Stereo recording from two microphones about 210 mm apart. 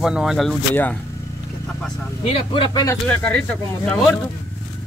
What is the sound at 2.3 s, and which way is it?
Speech, 25° left (ahead or behind).